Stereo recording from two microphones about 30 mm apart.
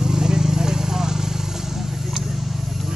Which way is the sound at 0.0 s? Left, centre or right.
Right.